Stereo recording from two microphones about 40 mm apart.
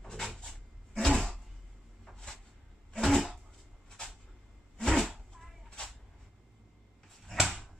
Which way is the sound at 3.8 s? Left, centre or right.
Centre.